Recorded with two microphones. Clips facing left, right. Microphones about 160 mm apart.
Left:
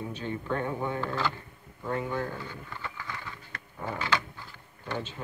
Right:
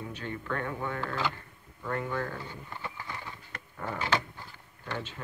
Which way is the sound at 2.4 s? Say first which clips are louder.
Left 1 dB; 25° right (ahead or behind).